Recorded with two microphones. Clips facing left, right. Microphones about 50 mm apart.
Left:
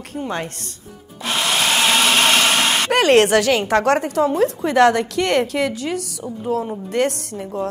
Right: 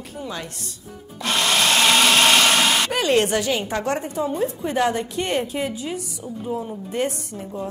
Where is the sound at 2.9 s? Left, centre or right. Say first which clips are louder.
Left 6 dB; left.